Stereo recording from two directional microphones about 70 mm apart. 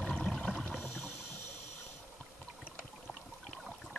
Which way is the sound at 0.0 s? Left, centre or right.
Centre.